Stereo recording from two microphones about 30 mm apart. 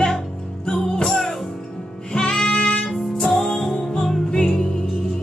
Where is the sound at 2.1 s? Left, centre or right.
Left.